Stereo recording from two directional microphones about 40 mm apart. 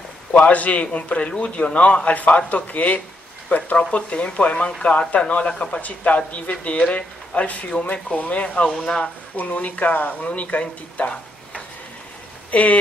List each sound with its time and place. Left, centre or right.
0.3 s speech: left
8.7 s speech: centre
9.4 s speech: left